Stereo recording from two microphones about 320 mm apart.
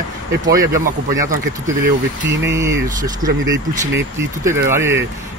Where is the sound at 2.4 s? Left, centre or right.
Centre.